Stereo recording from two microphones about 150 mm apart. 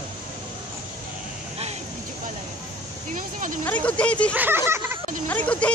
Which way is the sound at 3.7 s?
10° left (ahead or behind).